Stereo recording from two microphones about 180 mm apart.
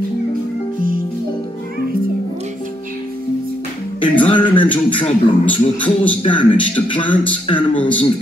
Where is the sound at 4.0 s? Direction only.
25° left (ahead or behind).